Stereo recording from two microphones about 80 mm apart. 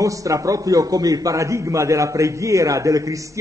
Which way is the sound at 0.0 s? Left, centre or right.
Right.